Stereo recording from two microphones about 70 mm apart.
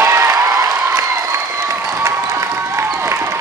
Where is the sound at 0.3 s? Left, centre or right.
Right.